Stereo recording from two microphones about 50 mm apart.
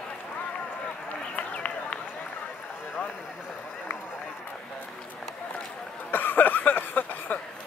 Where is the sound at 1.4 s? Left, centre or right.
Left.